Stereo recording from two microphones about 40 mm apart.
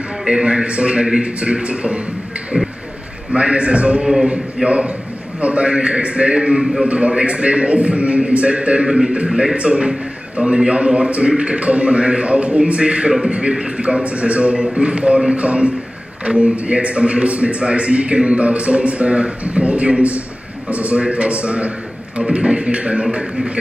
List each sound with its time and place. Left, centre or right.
0.3 s a man's voice: right
1.0 s speech: centre
1.4 s a man's voice: right
2.5 s speech: centre
3.3 s a man's voice: right
4.0 s speech: centre
4.6 s a man's voice: right
8.8 s speech: centre
9.6 s a man's voice: right